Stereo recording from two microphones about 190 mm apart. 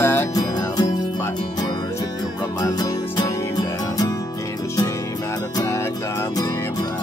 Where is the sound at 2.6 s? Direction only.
20° left (ahead or behind).